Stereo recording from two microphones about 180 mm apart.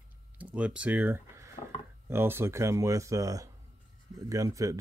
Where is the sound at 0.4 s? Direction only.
5° right (ahead or behind).